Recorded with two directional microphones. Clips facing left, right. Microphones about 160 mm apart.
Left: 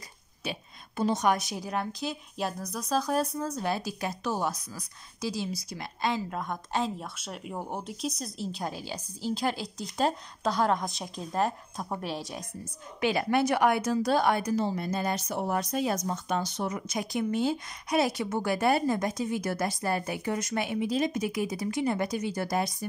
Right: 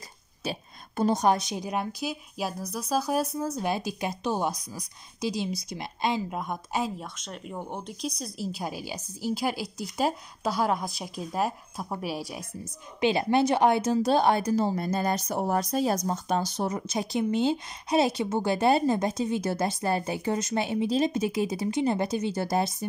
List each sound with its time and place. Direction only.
0.4 s a sound: 40° right (ahead or behind)
1.2 s a woman's voice: 25° right (ahead or behind)
7.2 s a woman's voice: 5° left (ahead or behind)
13.0 s a woman's voice: 25° right (ahead or behind)